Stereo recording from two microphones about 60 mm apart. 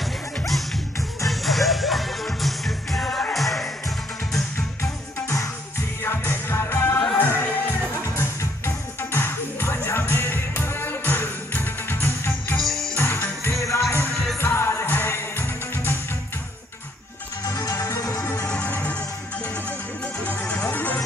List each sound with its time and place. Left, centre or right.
0.0 s music: centre
6.0 s music: left
12.5 s music: centre
13.0 s music: left
13.5 s music: left
14.4 s music: left
17.5 s music: left
18.4 s music: centre
20.5 s music: left